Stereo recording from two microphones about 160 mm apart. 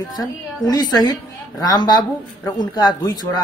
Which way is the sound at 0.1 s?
25° left (ahead or behind).